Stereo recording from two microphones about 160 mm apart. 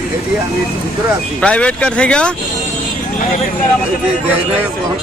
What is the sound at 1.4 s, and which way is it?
Speech, 10° left (ahead or behind).